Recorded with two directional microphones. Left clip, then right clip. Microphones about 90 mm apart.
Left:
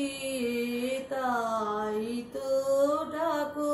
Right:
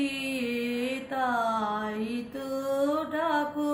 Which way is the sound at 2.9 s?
25° left (ahead or behind).